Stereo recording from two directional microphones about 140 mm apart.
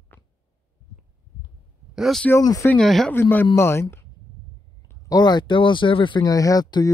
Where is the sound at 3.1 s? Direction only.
15° left (ahead or behind).